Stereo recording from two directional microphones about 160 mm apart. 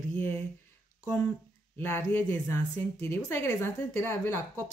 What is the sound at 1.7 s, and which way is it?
A woman's voice, 10° left (ahead or behind).